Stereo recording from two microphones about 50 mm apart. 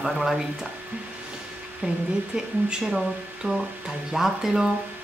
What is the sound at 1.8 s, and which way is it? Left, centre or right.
Speech, right.